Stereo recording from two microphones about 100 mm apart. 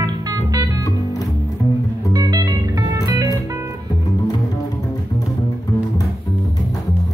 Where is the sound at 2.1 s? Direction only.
40° right (ahead or behind).